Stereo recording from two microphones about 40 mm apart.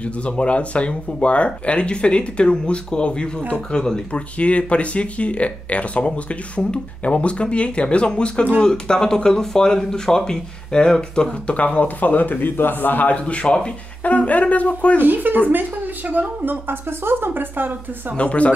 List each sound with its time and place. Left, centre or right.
0.0 s speech: left
11.5 s speech: left
13.1 s speech: left
14.0 s speech: left
15.0 s speech: right
18.1 s speech: left